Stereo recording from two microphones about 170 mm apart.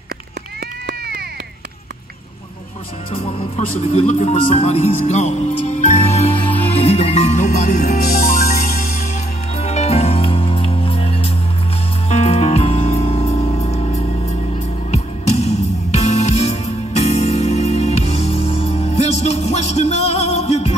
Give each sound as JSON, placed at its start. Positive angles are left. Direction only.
{"t": 0.8, "sound": "run", "side_deg": -70}
{"t": 3.1, "sound": "speech", "side_deg": 35}
{"t": 9.6, "sound": "music", "side_deg": 40}